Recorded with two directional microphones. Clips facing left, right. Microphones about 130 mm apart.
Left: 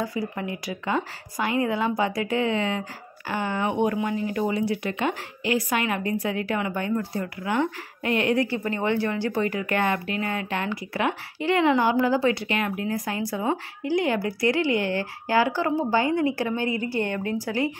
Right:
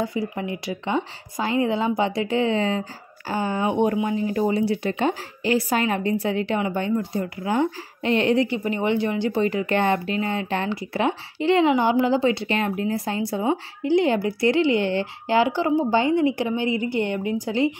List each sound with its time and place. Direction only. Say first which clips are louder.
0.0 s speech: right 3 dB; 25° right (ahead or behind)